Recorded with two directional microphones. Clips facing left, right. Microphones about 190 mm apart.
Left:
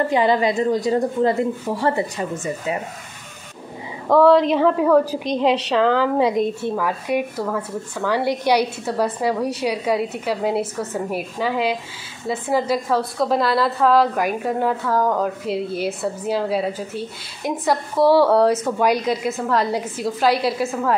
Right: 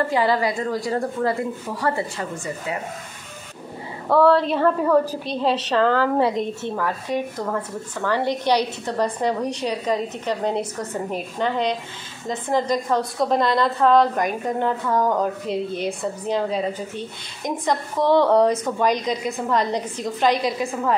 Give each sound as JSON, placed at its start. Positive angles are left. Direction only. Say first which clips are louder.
{"t": 0.1, "sound": "a woman's voice", "louder": "left 3 dB", "side_deg": 20}
{"t": 4.1, "sound": "a woman's voice", "louder": "left 3 dB", "side_deg": 15}